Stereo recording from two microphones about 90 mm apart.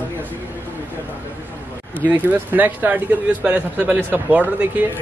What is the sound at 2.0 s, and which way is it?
Speech, 20° right (ahead or behind).